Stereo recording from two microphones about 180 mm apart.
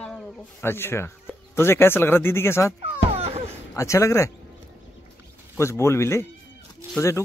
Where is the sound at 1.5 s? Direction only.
15° left (ahead or behind).